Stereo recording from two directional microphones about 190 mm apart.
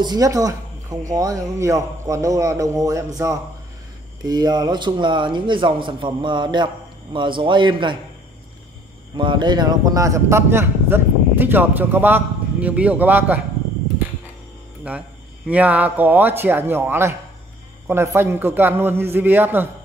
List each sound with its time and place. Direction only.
0.0 s a man's voice: 20° right (ahead or behind)
4.2 s a man's voice: 20° right (ahead or behind)
9.1 s a man's voice: 25° right (ahead or behind); by 13.4 s 10° right (ahead or behind)
14.9 s a man's voice: 5° right (ahead or behind)